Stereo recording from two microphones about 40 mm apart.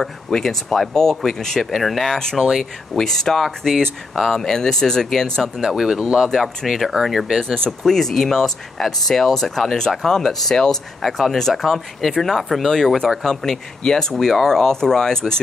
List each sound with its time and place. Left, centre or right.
0.0 s speech: centre
1.6 s speech: centre
2.6 s speech: centre
5.6 s speech: centre
6.2 s speech: centre
10.3 s speech: centre